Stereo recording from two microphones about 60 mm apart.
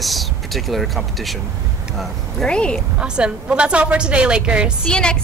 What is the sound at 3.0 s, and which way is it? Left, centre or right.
A woman's voice, centre.